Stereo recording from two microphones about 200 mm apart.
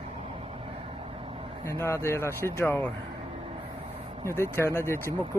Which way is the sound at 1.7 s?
15° left (ahead or behind).